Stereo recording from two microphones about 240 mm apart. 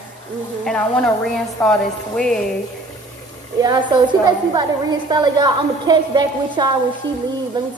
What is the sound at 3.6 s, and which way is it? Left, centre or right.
Speech, centre.